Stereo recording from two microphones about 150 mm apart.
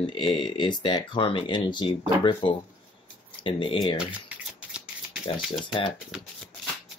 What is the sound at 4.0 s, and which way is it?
Typing, 10° right (ahead or behind).